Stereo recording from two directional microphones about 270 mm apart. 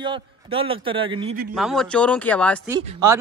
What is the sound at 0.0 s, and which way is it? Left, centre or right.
Speech, centre.